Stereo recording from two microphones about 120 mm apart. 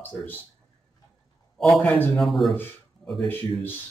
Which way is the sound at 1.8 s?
10° left (ahead or behind).